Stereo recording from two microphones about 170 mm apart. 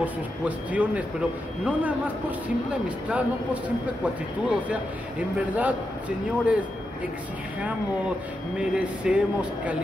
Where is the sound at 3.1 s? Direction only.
10° right (ahead or behind).